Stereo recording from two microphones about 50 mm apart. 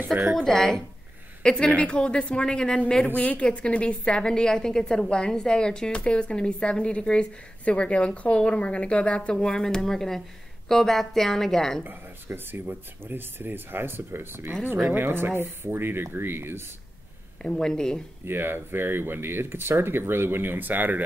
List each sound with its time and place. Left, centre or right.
0.4 s a woman's voice: centre
1.4 s a woman's voice: centre
12.4 s speech: right
17.4 s a woman's voice: centre
18.2 s speech: right